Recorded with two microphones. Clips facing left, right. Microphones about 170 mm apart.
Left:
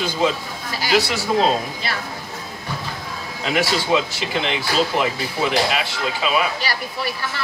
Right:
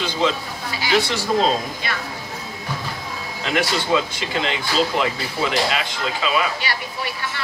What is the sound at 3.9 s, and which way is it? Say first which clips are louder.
Speech: left 1 dB; 15° left (ahead or behind).